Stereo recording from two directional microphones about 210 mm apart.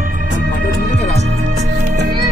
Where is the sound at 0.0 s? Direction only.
40° right (ahead or behind).